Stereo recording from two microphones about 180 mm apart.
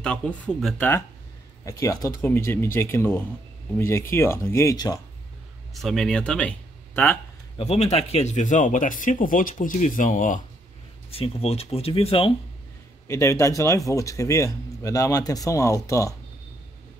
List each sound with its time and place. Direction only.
0.0 s a man's voice: 5° left (ahead or behind)
5.8 s speech: centre (ahead or behind)
7.5 s speech: 35° left (ahead or behind)
11.1 s speech: 30° left (ahead or behind)
13.1 s a man's voice: 15° left (ahead or behind)